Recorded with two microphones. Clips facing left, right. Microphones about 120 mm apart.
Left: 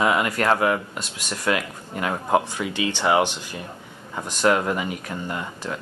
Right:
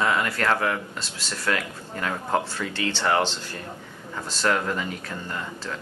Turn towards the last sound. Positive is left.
turn(degrees=15)  # may be behind; listen again after turning